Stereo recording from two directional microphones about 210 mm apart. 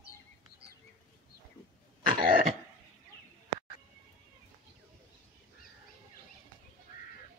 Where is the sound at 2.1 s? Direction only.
40° right (ahead or behind).